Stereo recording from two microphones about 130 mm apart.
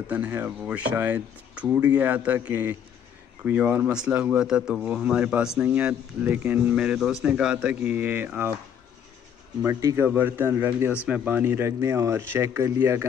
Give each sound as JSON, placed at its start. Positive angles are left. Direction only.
{"t": 0.1, "sound": "speech", "side_deg": -15}
{"t": 9.6, "sound": "speech", "side_deg": -25}